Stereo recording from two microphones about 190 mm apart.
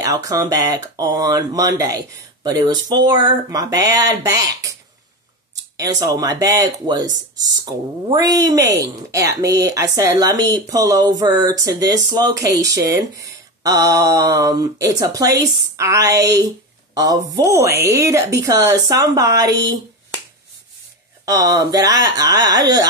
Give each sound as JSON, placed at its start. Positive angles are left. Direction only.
{"t": 0.0, "sound": "speech", "side_deg": -15}
{"t": 5.8, "sound": "speech", "side_deg": -20}
{"t": 21.3, "sound": "speech", "side_deg": -20}